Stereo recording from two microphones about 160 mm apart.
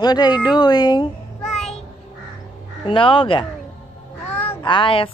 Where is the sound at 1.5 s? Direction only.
5° left (ahead or behind).